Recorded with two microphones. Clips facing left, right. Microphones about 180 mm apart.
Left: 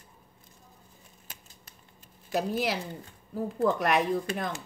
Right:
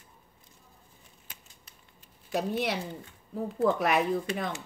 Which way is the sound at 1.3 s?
40° left (ahead or behind).